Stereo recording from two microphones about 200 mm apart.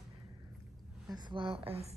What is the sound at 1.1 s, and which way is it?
Speech, 25° right (ahead or behind).